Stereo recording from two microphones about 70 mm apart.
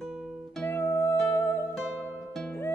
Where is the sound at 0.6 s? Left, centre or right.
Left.